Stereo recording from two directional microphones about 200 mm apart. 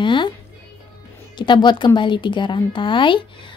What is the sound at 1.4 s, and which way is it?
Speech, 20° left (ahead or behind).